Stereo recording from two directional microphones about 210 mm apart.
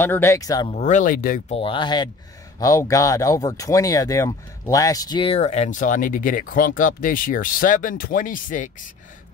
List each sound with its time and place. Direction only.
0.0 s speech: 10° left (ahead or behind)
0.7 s speech: 35° left (ahead or behind)
1.6 s speech: 25° left (ahead or behind); by 8.6 s 40° left (ahead or behind)